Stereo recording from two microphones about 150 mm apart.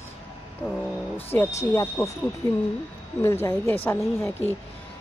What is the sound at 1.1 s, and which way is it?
Speech, 15° left (ahead or behind).